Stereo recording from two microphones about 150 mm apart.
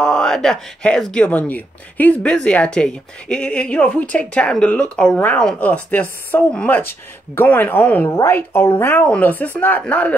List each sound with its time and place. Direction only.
0.0 s speech: 5° left (ahead or behind)